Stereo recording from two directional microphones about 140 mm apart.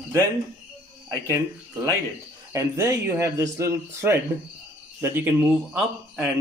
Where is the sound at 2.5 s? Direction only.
20° right (ahead or behind).